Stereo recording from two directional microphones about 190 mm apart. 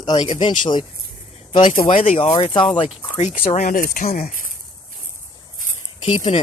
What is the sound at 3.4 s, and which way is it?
Speech, 40° left (ahead or behind).